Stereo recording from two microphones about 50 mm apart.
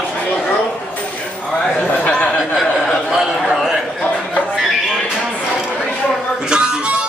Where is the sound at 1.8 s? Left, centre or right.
Left.